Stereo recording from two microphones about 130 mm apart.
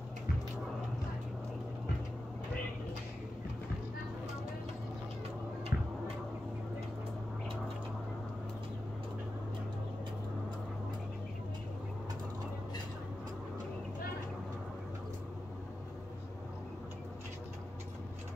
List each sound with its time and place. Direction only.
5.7 s tick-tock: 20° right (ahead or behind)